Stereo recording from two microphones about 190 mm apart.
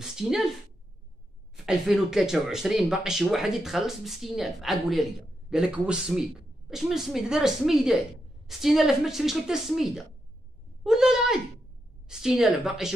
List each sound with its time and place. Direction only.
0.0 s speech: 5° right (ahead or behind)
1.7 s speech: centre (ahead or behind)